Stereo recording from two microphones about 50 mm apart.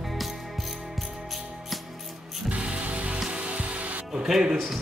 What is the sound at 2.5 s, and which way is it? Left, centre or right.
Music, right.